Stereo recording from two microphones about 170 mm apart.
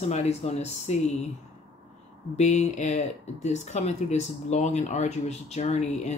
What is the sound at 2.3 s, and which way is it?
Speech, 45° left (ahead or behind).